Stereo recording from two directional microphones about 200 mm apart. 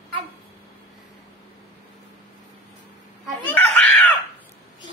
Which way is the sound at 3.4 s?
5° left (ahead or behind).